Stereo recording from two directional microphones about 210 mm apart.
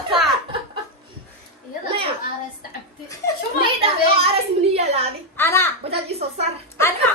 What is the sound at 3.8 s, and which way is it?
A woman's voice, 25° right (ahead or behind).